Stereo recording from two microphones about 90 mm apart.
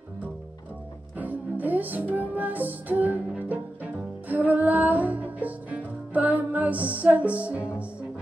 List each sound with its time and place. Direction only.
1.1 s music: 20° right (ahead or behind)